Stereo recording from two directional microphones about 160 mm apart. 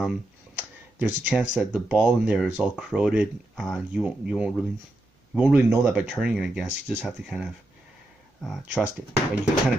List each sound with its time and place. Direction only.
0.9 s speech: 10° right (ahead or behind)
6.0 s speech: centre (ahead or behind)